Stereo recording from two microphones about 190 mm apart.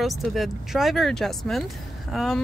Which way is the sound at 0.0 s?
Centre (ahead or behind).